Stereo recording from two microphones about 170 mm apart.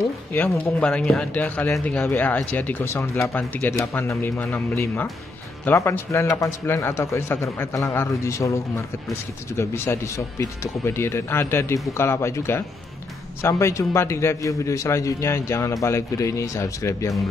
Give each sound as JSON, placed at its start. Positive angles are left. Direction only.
{"t": 0.3, "sound": "speech", "side_deg": 10}